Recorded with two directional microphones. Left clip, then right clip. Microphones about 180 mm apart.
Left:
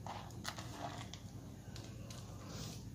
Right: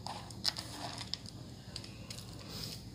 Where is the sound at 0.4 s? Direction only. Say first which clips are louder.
Right 11 dB; centre (ahead or behind).